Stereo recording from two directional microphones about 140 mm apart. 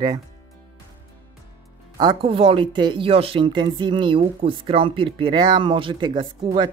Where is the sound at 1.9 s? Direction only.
35° right (ahead or behind).